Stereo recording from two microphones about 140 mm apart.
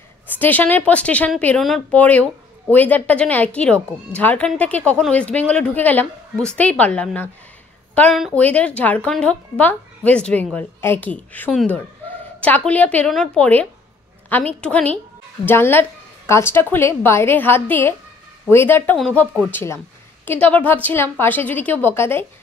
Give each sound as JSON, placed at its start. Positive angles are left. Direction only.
{"t": 0.4, "sound": "a woman's voice", "side_deg": 10}
{"t": 19.5, "sound": "a woman's voice", "side_deg": 20}